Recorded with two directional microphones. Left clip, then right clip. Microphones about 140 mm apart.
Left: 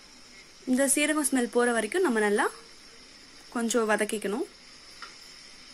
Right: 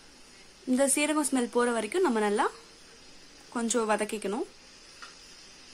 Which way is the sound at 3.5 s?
Centre (ahead or behind).